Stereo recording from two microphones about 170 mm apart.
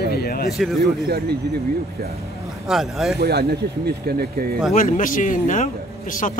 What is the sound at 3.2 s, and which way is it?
Speech, 65° right (ahead or behind).